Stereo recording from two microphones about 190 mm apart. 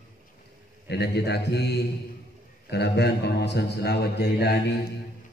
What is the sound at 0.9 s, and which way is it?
A man's voice, 60° left (ahead or behind).